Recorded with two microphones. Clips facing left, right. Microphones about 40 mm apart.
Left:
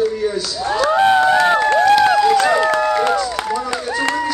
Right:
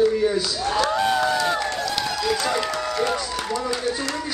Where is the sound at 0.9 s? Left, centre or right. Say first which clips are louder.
Left 8 dB; left.